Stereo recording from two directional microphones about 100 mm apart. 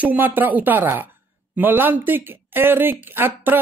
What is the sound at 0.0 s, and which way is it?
Speech, 15° right (ahead or behind).